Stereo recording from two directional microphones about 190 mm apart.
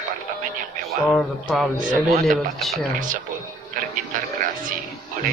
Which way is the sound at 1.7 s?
45° right (ahead or behind).